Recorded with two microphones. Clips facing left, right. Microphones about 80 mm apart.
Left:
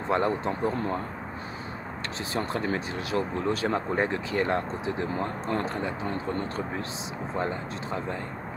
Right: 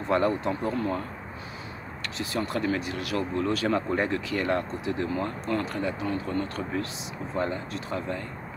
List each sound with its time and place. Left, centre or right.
0.1 s speech: left
2.1 s speech: left